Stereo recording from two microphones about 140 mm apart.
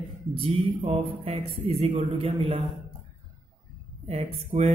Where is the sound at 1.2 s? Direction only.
45° right (ahead or behind).